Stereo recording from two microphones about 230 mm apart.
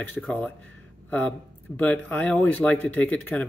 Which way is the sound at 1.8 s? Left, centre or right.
Centre.